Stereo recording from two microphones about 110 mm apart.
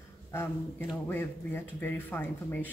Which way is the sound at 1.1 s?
20° left (ahead or behind).